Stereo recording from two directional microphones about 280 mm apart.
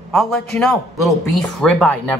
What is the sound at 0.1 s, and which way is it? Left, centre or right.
A man's voice, centre.